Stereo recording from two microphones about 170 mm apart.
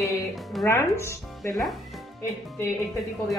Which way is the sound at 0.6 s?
15° left (ahead or behind).